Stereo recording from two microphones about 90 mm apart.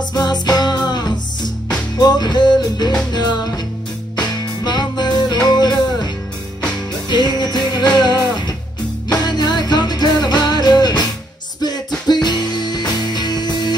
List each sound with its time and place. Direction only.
0.1 s music: 50° left (ahead or behind)
7.1 s music: 55° left (ahead or behind)
12.1 s music: 50° left (ahead or behind)